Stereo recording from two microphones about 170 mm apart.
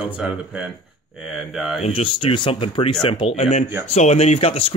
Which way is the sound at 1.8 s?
35° left (ahead or behind).